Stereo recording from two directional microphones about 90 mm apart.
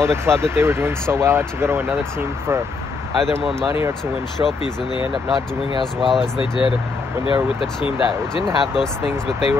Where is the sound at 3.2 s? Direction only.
5° left (ahead or behind).